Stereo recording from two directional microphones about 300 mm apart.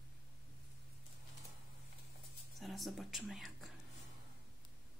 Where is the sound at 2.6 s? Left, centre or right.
Centre.